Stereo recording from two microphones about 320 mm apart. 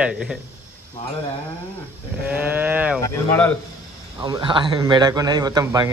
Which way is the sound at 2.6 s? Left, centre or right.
Centre.